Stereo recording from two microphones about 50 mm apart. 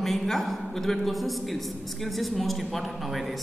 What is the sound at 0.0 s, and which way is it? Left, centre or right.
Speech, centre.